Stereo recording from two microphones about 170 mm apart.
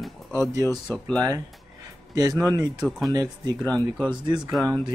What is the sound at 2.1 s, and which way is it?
Speech, 20° right (ahead or behind).